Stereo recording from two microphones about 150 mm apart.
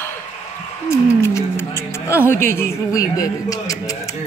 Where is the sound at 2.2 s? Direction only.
15° left (ahead or behind).